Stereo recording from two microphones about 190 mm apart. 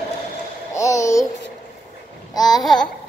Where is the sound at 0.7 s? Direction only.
15° left (ahead or behind).